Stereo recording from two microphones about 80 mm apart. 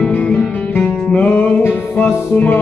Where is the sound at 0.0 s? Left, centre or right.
Centre.